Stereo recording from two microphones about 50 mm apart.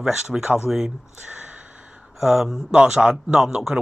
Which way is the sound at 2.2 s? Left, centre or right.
Centre.